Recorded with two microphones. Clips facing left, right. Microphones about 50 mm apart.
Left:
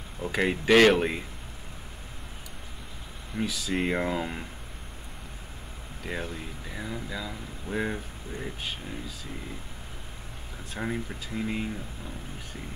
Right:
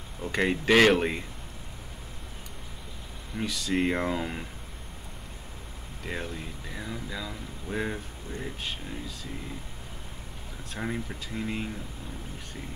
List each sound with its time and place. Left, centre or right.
0.2 s speech: centre
3.3 s speech: centre
6.0 s speech: centre
10.7 s speech: centre